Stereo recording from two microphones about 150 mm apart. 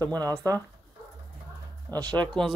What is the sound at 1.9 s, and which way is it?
Speech, 15° left (ahead or behind).